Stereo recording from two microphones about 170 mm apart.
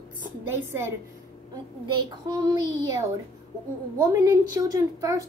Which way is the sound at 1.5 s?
25° right (ahead or behind).